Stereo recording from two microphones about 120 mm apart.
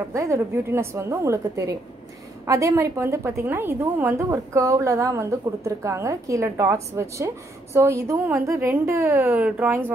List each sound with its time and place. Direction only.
0.1 s a woman's voice: 25° right (ahead or behind)